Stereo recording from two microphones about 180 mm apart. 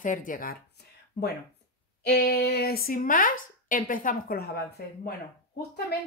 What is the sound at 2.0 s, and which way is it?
A woman's voice, 60° left (ahead or behind).